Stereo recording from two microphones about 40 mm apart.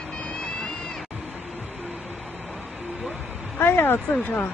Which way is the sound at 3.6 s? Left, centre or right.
Left.